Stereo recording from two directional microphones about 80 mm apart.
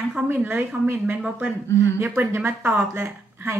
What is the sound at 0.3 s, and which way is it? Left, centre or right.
A woman's voice, right.